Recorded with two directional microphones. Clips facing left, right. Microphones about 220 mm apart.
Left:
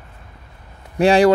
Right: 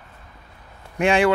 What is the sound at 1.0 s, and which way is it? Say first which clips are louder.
Speech: left 5 dB; 35° left (ahead or behind).